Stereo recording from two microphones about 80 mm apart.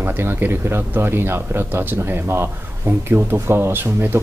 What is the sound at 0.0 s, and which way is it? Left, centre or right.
Speech, right.